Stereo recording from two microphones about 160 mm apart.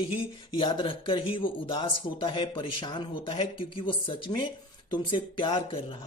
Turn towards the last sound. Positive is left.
turn(degrees=35)  # may be behind; listen again after turning